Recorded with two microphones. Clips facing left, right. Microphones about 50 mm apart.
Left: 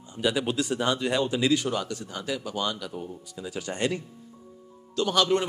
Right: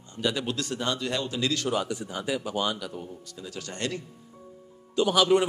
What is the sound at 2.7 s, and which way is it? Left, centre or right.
Speech, centre.